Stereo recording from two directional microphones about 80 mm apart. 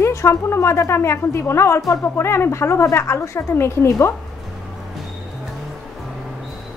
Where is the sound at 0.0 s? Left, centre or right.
Left.